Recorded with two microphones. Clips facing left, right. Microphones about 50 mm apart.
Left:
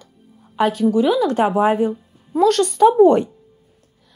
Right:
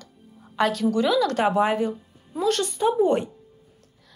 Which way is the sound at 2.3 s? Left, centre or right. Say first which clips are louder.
Left 8 dB; left.